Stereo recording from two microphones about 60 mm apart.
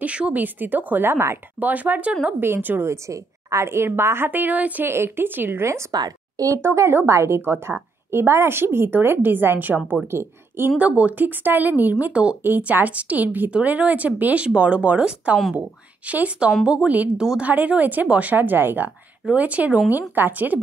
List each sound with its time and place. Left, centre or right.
0.0 s speech: right
1.6 s speech: right
2.4 s a woman's voice: right
2.9 s a woman's voice: right
4.8 s a woman's voice: right
5.9 s a woman's voice: right
6.6 s a woman's voice: right
10.8 s speech: right
12.4 s a woman's voice: right
19.3 s a woman's voice: right